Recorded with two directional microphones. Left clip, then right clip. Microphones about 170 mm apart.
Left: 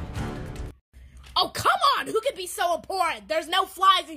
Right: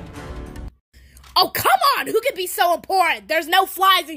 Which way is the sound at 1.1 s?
40° right (ahead or behind).